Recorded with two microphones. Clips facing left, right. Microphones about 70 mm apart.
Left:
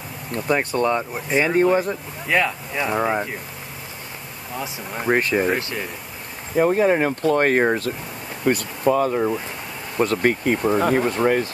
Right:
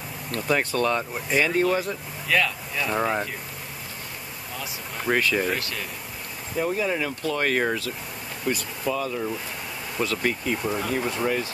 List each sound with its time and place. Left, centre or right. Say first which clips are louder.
0.7 s speech: left 3 dB; left
3.0 s speech: left 3 dB; centre
4.6 s speech: left 6 dB; centre
6.5 s speech: left 8 dB; left
8.5 s speech: left 8 dB; left